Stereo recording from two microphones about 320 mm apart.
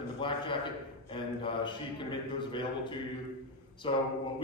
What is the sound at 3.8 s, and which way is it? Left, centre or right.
Speech, centre.